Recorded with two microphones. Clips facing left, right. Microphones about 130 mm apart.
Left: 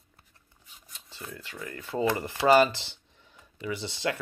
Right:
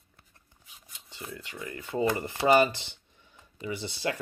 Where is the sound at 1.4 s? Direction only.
15° right (ahead or behind).